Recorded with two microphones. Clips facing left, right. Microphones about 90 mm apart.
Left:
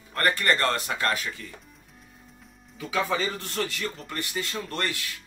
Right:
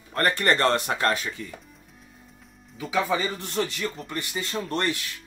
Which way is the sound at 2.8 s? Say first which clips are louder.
Right 2 dB; 10° right (ahead or behind).